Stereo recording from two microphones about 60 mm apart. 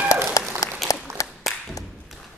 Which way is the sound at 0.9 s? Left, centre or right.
Left.